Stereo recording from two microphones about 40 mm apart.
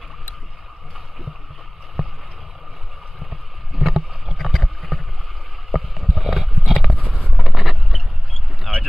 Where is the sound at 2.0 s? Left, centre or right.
Centre.